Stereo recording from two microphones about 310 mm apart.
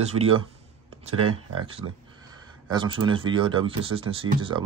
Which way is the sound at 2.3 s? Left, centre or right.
Centre.